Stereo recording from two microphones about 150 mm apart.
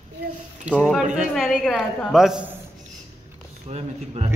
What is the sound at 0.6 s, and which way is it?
A man's voice, 5° right (ahead or behind).